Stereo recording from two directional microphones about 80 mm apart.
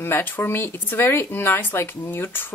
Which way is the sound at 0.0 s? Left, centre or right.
Left.